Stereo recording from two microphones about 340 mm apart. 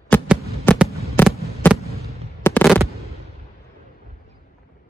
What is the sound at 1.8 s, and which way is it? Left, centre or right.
Fireworks, centre.